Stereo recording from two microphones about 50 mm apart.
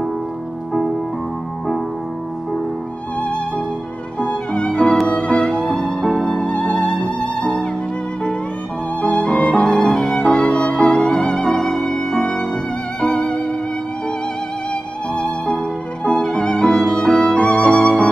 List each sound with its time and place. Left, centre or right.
3.2 s music: left
5.9 s music: centre
6.3 s music: left
9.0 s violin: left
13.0 s music: centre
15.1 s music: centre